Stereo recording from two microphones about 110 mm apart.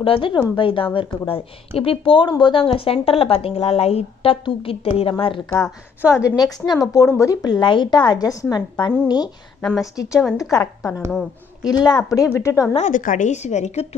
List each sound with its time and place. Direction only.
0.0 s a woman's voice: 55° left (ahead or behind)
5.5 s a woman's voice: 30° left (ahead or behind)
10.5 s a woman's voice: 30° left (ahead or behind)
12.1 s speech: 30° left (ahead or behind)
12.7 s a woman's voice: 90° left